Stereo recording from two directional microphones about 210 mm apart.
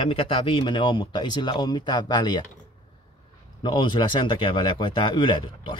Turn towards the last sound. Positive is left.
turn(degrees=25)  # may be behind; listen again after turning